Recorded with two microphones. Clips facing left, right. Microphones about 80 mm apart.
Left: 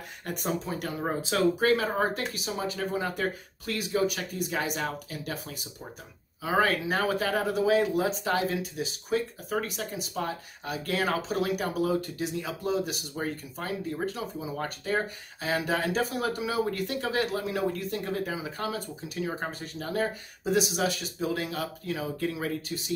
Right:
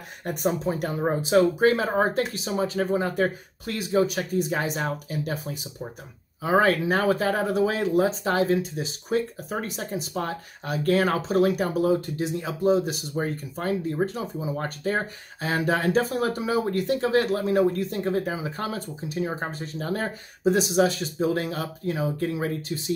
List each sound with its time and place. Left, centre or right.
0.2 s speech: right